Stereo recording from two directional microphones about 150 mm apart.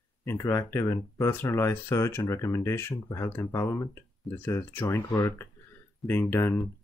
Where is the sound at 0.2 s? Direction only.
15° left (ahead or behind).